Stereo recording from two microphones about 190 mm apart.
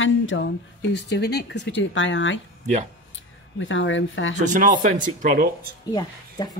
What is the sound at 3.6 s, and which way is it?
Speech, 80° left.